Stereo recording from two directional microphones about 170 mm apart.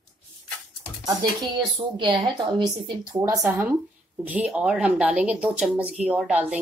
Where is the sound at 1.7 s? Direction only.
30° right (ahead or behind).